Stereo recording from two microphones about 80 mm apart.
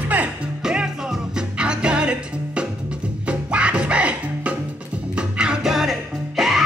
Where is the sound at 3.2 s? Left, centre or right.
Centre.